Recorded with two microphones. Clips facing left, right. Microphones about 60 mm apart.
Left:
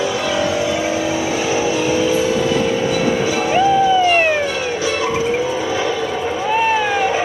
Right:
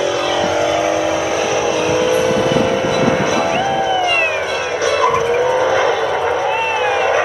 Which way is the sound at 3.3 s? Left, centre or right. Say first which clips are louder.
Left 1 dB; centre.